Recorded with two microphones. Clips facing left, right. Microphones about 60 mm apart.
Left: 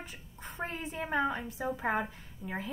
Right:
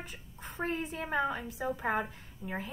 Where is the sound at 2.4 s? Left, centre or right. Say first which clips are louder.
Even; centre.